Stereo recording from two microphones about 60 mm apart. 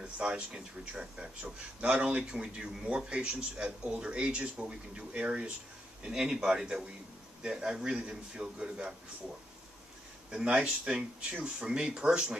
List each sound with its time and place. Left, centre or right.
0.0 s a man's voice: centre
10.3 s a man's voice: centre